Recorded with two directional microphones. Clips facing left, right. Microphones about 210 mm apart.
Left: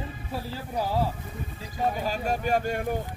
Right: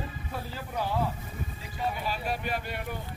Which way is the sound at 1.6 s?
45° left (ahead or behind).